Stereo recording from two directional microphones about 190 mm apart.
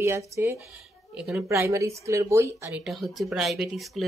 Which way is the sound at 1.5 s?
15° right (ahead or behind).